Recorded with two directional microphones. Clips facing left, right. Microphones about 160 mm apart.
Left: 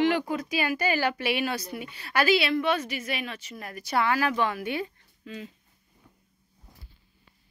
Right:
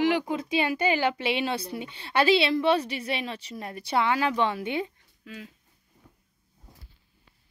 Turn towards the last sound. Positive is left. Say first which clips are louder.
# left 3 dB
turn(degrees=-5)  # may be behind; listen again after turning